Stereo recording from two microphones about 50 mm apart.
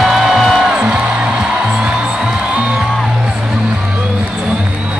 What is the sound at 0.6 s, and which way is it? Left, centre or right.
Music, centre.